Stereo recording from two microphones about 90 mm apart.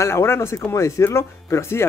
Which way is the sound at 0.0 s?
30° left (ahead or behind).